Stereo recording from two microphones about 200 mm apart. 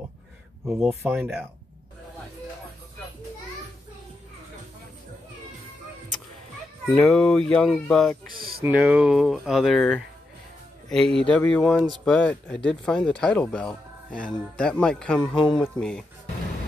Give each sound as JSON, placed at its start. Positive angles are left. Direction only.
{"t": 0.7, "sound": "speech", "side_deg": -10}
{"t": 7.0, "sound": "speech", "side_deg": 5}
{"t": 8.3, "sound": "a sound", "side_deg": -50}
{"t": 8.6, "sound": "a man's voice", "side_deg": -5}
{"t": 15.3, "sound": "speech", "side_deg": 25}
{"t": 15.6, "sound": "speech", "side_deg": 5}